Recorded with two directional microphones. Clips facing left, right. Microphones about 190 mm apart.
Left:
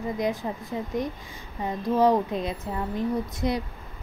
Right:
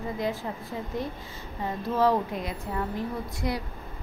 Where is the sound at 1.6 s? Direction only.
15° left (ahead or behind).